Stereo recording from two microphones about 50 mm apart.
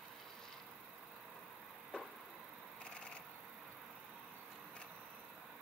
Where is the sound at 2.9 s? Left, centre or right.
Left.